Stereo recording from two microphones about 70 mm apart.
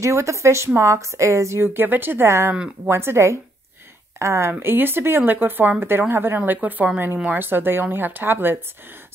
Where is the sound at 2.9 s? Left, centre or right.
Right.